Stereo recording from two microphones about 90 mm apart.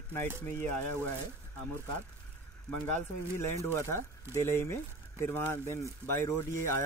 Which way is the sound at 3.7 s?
30° left (ahead or behind).